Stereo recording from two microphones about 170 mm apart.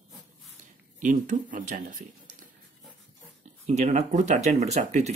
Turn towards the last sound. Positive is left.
turn(degrees=-40)  # may be behind; listen again after turning